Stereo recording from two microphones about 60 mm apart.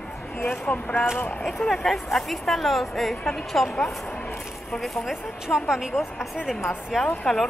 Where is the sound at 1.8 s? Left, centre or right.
Centre.